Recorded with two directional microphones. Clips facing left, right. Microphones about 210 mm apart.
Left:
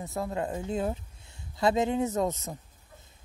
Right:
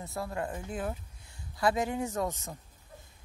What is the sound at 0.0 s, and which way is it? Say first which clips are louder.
Speech: left 4 dB; 20° left (ahead or behind).